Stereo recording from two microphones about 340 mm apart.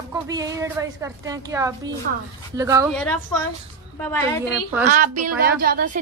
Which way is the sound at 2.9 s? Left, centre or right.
Centre.